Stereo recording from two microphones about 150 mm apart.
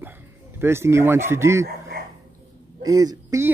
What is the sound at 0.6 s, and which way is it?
Speech, 15° right (ahead or behind).